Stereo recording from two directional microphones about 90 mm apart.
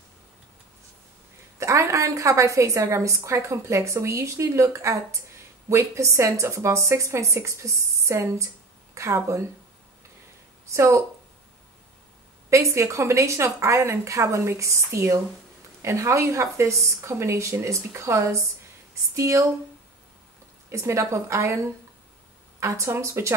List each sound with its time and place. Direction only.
1.6 s a woman's voice: 35° right (ahead or behind)
10.7 s a woman's voice: 35° right (ahead or behind)
12.4 s a woman's voice: 35° right (ahead or behind)
20.7 s a woman's voice: 35° right (ahead or behind)
22.6 s a woman's voice: 30° right (ahead or behind)